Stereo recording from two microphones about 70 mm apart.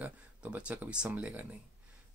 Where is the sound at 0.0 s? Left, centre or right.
Centre.